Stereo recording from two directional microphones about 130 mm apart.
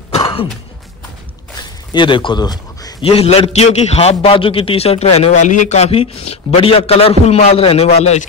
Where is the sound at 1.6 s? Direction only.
35° left (ahead or behind).